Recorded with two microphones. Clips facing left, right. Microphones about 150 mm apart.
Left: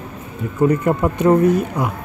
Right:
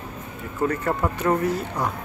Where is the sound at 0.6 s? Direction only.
20° left (ahead or behind).